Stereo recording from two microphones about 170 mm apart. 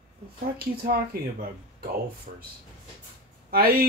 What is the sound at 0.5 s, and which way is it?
Speech, 65° right (ahead or behind).